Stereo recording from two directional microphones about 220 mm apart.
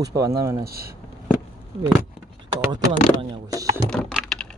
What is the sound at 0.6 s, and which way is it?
Speech, 45° right (ahead or behind).